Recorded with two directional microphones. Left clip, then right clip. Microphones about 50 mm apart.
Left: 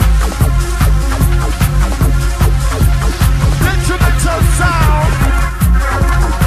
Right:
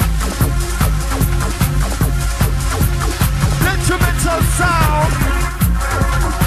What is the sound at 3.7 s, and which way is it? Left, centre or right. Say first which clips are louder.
Music: even; left.